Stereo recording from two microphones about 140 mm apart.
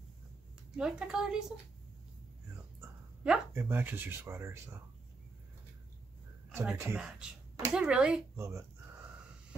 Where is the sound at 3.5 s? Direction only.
15° right (ahead or behind).